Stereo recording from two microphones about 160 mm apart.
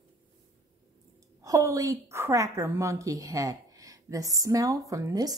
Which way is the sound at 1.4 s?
20° right (ahead or behind).